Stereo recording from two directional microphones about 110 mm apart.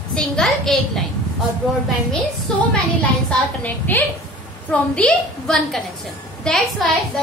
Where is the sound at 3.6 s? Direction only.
15° left (ahead or behind).